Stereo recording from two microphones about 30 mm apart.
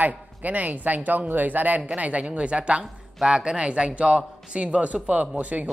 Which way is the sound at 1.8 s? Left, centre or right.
Right.